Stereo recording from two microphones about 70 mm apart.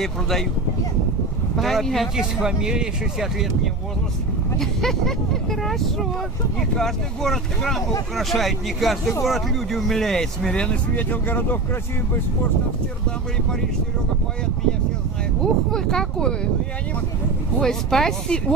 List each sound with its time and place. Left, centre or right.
0.0 s speech: centre
1.6 s speech: centre
2.4 s speech: centre
4.6 s speech: centre
11.1 s speech: left
15.7 s speech: centre
17.6 s speech: centre